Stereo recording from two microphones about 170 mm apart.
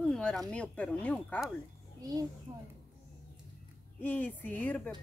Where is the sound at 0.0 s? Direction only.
5° left (ahead or behind).